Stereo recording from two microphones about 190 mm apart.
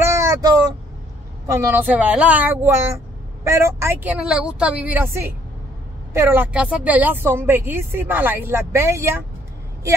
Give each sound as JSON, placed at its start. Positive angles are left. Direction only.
{"t": 0.0, "sound": "vehicle", "side_deg": -15}
{"t": 1.5, "sound": "speech", "side_deg": -15}